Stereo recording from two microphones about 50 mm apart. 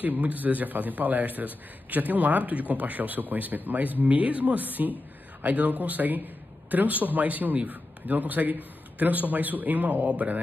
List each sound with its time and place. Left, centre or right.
0.0 s a man's voice: right